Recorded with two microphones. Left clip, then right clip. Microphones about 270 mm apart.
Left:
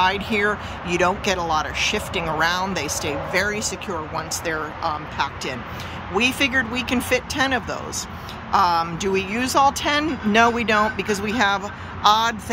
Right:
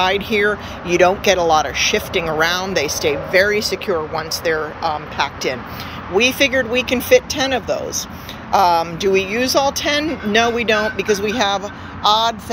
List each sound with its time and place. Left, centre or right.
0.0 s speech: centre